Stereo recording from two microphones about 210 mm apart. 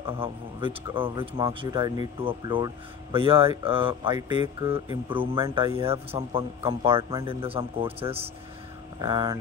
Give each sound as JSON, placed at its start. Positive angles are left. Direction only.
{"t": 0.0, "sound": "a man's voice", "side_deg": -25}